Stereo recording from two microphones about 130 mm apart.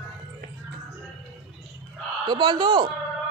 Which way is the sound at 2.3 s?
35° right (ahead or behind).